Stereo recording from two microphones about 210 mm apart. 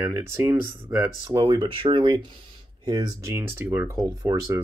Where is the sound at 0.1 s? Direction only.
10° right (ahead or behind).